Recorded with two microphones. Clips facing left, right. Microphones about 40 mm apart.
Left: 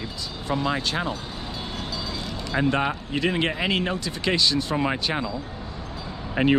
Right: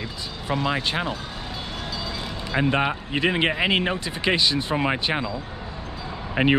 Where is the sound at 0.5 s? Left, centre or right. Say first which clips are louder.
Right 1 dB; right.